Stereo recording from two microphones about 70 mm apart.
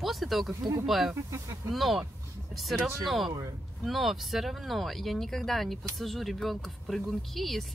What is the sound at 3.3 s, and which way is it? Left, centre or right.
Speech, right.